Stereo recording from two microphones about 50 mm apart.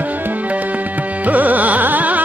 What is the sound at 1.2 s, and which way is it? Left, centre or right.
Carnatic music, right.